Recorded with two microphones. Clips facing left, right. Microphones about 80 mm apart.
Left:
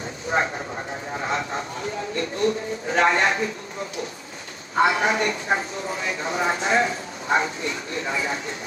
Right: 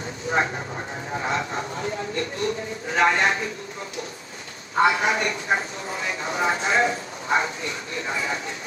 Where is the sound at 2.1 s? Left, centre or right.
Left.